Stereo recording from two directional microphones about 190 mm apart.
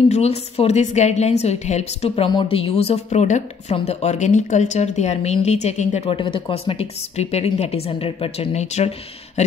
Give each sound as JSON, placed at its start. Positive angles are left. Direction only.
{"t": 0.1, "sound": "a woman's voice", "side_deg": 35}